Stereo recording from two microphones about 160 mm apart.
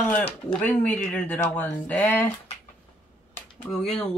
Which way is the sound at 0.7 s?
10° left (ahead or behind).